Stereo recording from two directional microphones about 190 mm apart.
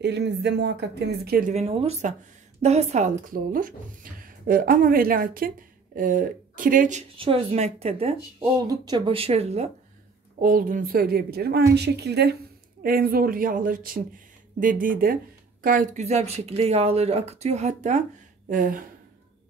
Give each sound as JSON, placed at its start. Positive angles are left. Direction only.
{"t": 0.0, "sound": "speech", "side_deg": -60}
{"t": 1.5, "sound": "speech", "side_deg": -30}
{"t": 7.2, "sound": "speech", "side_deg": -30}
{"t": 8.6, "sound": "speech", "side_deg": -20}
{"t": 10.4, "sound": "speech", "side_deg": -45}